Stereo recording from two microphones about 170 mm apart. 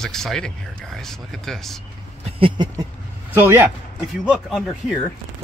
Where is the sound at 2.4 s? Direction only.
25° right (ahead or behind).